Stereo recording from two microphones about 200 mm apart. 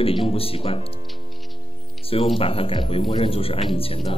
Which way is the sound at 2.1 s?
25° left (ahead or behind).